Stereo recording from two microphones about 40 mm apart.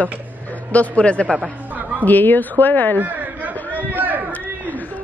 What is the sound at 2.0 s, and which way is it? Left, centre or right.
Speech, left.